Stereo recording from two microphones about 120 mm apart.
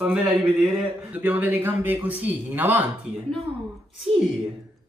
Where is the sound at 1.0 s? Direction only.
15° right (ahead or behind).